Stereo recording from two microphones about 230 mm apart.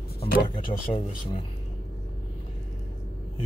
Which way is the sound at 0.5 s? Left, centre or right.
Left.